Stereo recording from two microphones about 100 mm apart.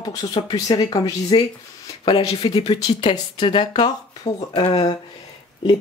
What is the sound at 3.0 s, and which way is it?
Speech, 60° left (ahead or behind).